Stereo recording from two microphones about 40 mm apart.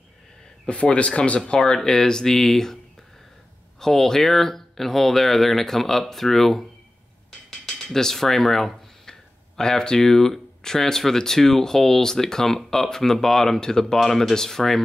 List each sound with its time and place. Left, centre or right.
0.7 s speech: left
1.6 s speech: centre
3.8 s speech: centre
7.2 s a sound: centre
9.6 s speech: centre